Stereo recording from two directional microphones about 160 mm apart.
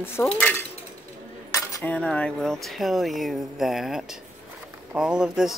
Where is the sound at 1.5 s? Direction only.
15° left (ahead or behind).